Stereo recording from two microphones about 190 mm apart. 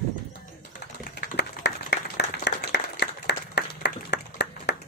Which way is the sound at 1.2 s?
60° left (ahead or behind).